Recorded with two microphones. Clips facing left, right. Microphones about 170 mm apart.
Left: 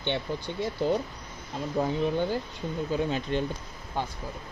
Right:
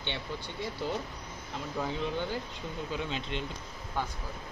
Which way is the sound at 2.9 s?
45° left (ahead or behind).